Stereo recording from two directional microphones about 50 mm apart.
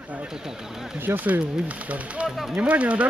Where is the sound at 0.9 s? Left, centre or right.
Right.